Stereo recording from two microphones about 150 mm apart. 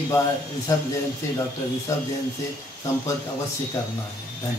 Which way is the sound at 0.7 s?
20° left (ahead or behind).